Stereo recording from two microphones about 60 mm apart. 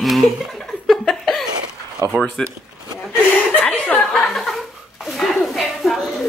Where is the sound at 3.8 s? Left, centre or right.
Centre.